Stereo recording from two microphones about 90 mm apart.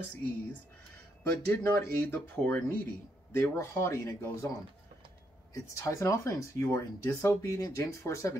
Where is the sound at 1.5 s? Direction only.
25° left (ahead or behind).